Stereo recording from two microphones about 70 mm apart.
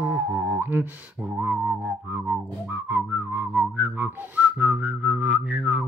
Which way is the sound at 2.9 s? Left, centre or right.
Right.